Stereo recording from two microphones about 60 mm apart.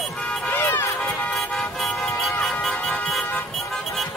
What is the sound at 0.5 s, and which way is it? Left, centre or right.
Vehicle, left.